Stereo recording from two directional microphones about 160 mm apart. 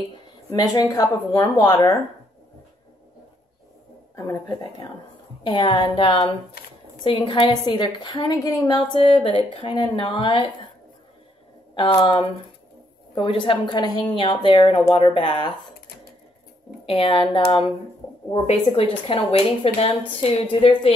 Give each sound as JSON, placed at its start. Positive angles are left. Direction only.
{"t": 0.5, "sound": "a woman's voice", "side_deg": 20}
{"t": 4.1, "sound": "a woman's voice", "side_deg": 20}
{"t": 12.0, "sound": "a woman's voice", "side_deg": 30}
{"t": 16.8, "sound": "a woman's voice", "side_deg": 35}